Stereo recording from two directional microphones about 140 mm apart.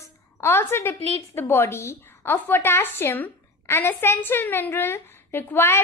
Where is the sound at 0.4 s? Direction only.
15° left (ahead or behind).